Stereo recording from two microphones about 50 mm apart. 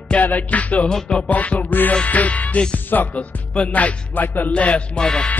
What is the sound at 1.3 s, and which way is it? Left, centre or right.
Music, left.